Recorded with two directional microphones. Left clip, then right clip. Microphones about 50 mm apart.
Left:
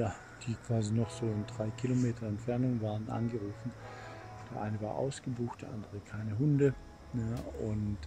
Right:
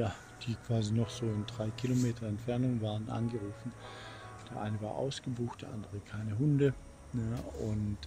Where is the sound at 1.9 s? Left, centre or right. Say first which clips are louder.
Even; right.